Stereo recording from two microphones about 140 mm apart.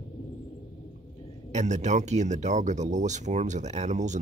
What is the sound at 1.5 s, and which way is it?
Speech, 55° right (ahead or behind).